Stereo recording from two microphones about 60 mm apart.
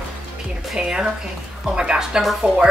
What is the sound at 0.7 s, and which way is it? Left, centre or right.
Speech, centre.